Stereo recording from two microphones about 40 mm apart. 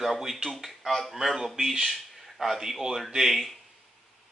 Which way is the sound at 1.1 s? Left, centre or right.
Centre.